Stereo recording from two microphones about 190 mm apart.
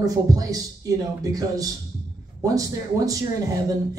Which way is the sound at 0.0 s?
20° right (ahead or behind).